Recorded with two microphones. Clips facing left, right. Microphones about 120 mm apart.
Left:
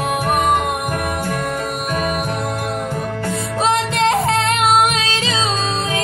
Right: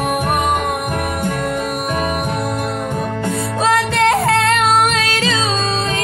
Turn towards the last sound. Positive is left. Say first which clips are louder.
# right 2 dB
turn(degrees=20)  # may be behind; listen again after turning